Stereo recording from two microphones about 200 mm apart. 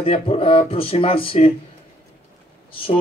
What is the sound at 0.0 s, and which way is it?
Speech, 30° left (ahead or behind).